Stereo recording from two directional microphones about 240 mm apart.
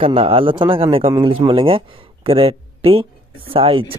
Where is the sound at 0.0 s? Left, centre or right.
Right.